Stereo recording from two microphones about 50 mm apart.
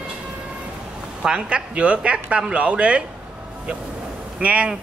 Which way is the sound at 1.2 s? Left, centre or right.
Centre.